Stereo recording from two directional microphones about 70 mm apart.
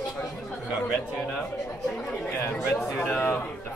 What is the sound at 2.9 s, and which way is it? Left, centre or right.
Speech, left.